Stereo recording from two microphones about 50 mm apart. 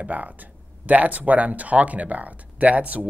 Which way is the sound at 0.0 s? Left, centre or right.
Right.